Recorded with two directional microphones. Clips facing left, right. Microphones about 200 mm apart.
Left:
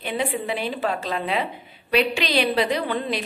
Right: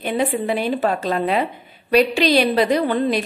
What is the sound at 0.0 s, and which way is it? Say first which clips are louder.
A woman's voice: right 5 dB; 45° right (ahead or behind).